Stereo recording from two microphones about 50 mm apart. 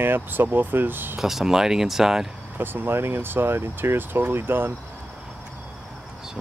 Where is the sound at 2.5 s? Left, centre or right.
Right.